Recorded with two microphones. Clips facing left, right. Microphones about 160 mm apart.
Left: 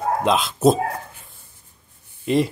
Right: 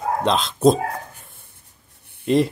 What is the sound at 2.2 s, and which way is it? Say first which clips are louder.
Speech: right 2 dB; centre (ahead or behind).